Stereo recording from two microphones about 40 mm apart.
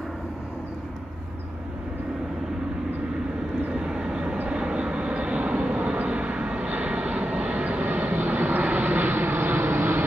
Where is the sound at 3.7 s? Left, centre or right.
Centre.